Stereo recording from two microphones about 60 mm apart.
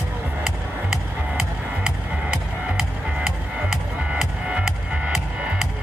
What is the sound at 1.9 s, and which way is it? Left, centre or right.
Music, centre.